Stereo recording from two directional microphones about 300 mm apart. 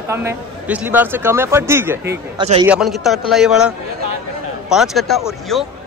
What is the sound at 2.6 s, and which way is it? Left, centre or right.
A man's voice, centre.